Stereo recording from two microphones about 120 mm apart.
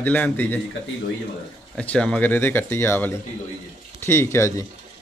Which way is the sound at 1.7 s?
10° left (ahead or behind).